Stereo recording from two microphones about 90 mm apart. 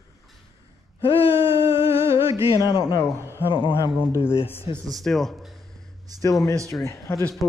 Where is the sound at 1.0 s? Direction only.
80° left.